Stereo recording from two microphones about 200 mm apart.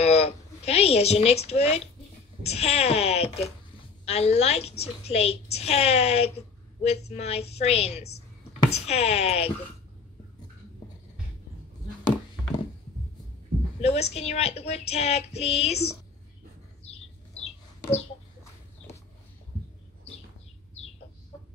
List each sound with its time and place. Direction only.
0.0 s a woman's voice: 30° left (ahead or behind)
13.7 s a woman's voice: 30° left (ahead or behind)
16.8 s bird: 30° left (ahead or behind)